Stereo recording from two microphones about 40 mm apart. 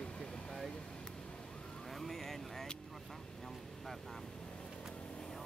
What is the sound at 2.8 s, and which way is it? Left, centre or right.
Speech, centre.